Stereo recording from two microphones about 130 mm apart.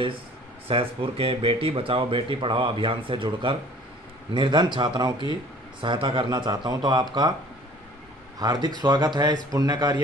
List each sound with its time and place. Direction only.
0.7 s a man's voice: 45° right (ahead or behind)
8.4 s a man's voice: 30° right (ahead or behind)